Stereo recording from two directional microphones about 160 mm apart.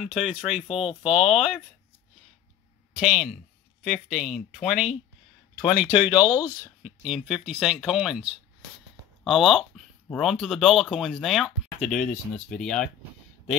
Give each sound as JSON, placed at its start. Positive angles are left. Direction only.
{"t": 0.0, "sound": "speech", "side_deg": 0}
{"t": 0.7, "sound": "speech", "side_deg": 35}
{"t": 3.0, "sound": "speech", "side_deg": 0}
{"t": 6.0, "sound": "speech", "side_deg": 25}
{"t": 6.6, "sound": "speech", "side_deg": -5}